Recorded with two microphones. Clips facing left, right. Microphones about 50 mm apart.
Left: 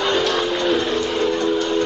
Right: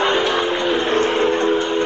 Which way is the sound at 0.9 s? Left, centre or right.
Right.